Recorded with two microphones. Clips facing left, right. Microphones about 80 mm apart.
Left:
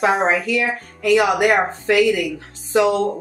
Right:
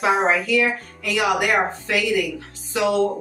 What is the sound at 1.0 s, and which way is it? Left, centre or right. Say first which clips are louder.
Speech: left 6 dB; left.